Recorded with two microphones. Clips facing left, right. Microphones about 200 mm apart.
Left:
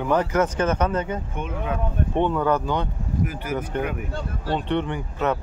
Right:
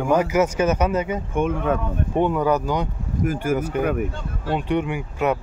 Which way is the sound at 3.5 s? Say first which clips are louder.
Right 5 dB; 10° right (ahead or behind).